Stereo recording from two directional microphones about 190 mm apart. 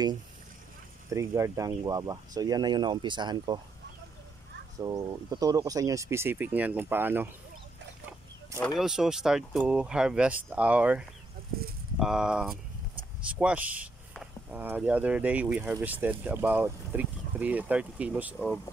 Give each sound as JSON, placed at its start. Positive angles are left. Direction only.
{"t": 1.1, "sound": "speech", "side_deg": -15}
{"t": 4.7, "sound": "speech", "side_deg": -20}
{"t": 8.7, "sound": "speech", "side_deg": -5}